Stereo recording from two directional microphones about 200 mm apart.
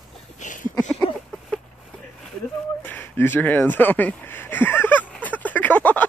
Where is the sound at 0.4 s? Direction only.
40° left (ahead or behind).